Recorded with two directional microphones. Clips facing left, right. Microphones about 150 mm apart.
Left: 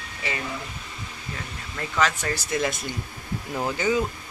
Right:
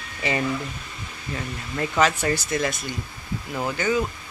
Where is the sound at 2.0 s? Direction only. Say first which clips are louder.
Right 3 dB; 5° right (ahead or behind).